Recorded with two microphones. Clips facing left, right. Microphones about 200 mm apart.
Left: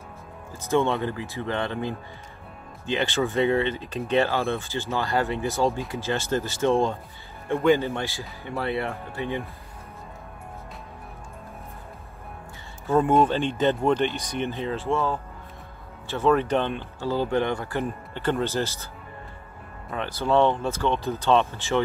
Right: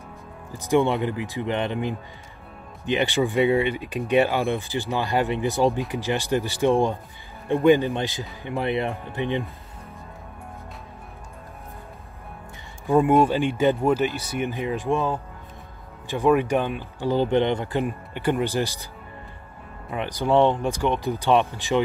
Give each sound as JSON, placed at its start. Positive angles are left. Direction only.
{"t": 0.5, "sound": "speech", "side_deg": -15}
{"t": 12.8, "sound": "speech", "side_deg": -15}
{"t": 19.9, "sound": "speech", "side_deg": -15}